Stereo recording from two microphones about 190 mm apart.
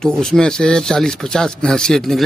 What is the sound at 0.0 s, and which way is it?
Speech, 5° left (ahead or behind).